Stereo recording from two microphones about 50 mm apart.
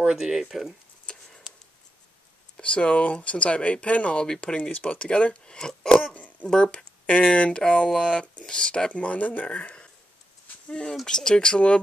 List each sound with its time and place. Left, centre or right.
0.0 s speech: centre
2.5 s speech: left